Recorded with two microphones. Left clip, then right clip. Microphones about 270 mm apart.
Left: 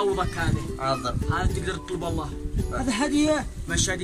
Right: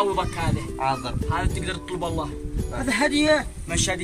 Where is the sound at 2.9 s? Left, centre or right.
Centre.